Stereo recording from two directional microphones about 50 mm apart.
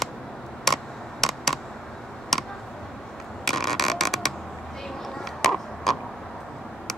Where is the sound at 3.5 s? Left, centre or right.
Centre.